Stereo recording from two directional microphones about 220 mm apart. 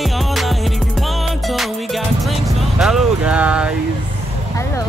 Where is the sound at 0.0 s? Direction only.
Centre (ahead or behind).